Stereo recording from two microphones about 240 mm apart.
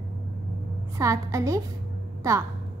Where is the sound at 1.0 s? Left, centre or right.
Centre.